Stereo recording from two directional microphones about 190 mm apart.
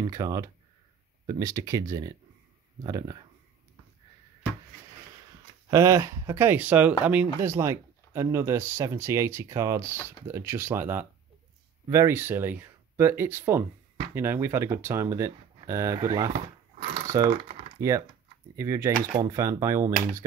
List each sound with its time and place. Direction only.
0.0 s speech: 20° right (ahead or behind)
5.7 s speech: 15° right (ahead or behind)
16.9 s typing: 15° right (ahead or behind)
18.6 s speech: 15° right (ahead or behind)